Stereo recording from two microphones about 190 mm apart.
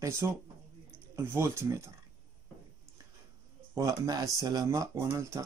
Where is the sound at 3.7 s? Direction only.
20° right (ahead or behind).